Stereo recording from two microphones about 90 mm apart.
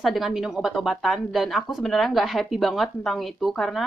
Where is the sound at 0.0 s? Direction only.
Centre (ahead or behind).